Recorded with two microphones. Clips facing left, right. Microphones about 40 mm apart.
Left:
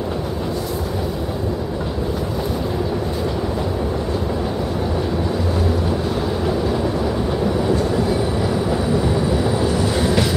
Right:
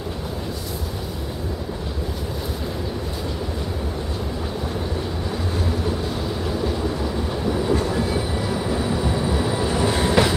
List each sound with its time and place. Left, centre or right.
9.4 s vehicle: centre
9.8 s train: centre